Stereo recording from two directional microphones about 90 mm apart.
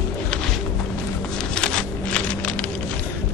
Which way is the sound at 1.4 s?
10° left (ahead or behind).